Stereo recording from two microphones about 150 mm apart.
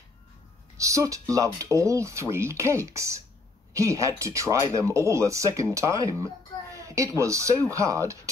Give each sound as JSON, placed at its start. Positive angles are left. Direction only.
{"t": 0.7, "sound": "speech", "side_deg": -20}